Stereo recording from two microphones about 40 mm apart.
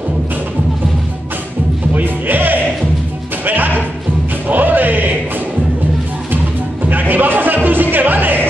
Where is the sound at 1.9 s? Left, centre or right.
Right.